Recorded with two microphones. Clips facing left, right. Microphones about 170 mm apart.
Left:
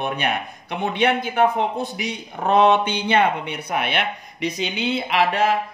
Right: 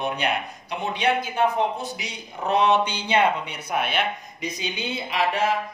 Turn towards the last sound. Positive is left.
turn(degrees=65)  # may be behind; listen again after turning